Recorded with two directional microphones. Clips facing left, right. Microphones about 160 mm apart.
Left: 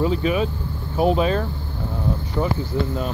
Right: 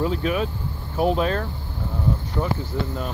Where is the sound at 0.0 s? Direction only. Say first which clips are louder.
Left 3 dB; centre (ahead or behind).